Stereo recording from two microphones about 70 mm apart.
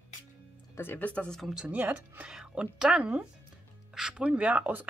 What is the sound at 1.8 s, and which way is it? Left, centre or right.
Speech, right.